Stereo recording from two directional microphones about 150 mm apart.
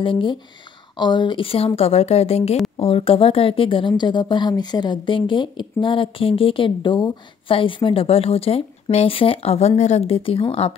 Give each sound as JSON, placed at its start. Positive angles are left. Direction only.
{"t": 0.0, "sound": "a woman's voice", "side_deg": 35}